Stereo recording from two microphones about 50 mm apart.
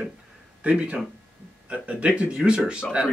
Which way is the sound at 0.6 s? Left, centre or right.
Right.